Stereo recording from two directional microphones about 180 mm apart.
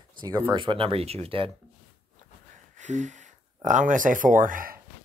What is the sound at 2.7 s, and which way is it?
Speech, 40° right (ahead or behind).